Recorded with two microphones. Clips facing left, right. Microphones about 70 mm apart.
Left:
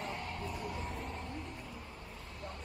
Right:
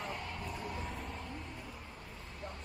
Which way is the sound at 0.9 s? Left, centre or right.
Left.